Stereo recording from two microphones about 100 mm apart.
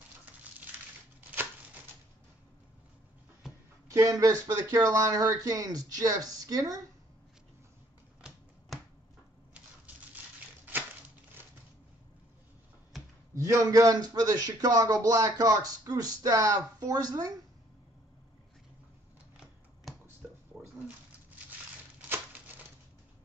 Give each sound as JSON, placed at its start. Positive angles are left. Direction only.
{"t": 0.5, "sound": "typewriter", "side_deg": -15}
{"t": 3.9, "sound": "a man's voice", "side_deg": -35}
{"t": 13.3, "sound": "a man's voice", "side_deg": -30}
{"t": 19.9, "sound": "a sound", "side_deg": 0}